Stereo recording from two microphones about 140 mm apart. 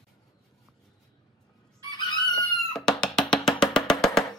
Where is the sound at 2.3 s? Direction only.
25° left (ahead or behind).